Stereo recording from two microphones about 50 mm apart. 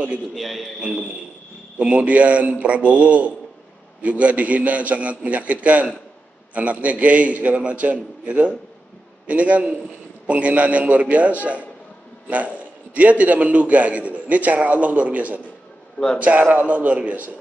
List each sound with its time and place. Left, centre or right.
0.3 s a man's voice: centre
0.7 s a man's voice: centre
1.8 s a man's voice: right